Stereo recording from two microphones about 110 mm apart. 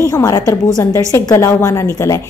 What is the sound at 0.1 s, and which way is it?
A woman's voice, 35° left (ahead or behind).